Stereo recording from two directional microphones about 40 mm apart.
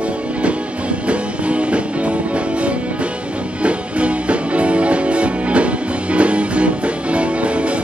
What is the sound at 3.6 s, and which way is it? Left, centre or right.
Music, right.